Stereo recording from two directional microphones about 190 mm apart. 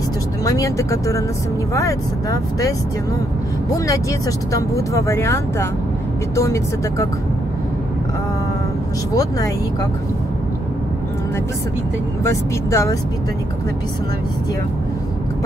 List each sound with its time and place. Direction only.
0.5 s speech: 15° left (ahead or behind)
3.7 s speech: 15° left (ahead or behind)
9.1 s speech: 20° left (ahead or behind)
12.3 s speech: 15° left (ahead or behind)